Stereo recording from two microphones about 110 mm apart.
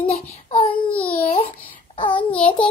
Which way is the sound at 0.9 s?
10° left (ahead or behind).